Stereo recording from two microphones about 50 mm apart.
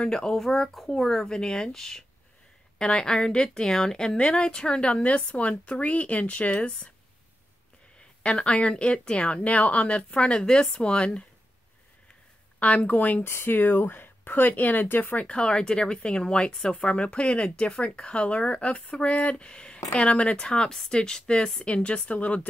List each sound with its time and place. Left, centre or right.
0.0 s a woman's voice: centre
8.2 s a woman's voice: left
12.5 s speech: left
13.3 s speech: left
15.2 s a woman's voice: centre
21.6 s a woman's voice: left